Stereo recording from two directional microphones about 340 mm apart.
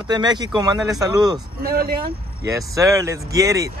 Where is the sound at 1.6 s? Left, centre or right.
Right.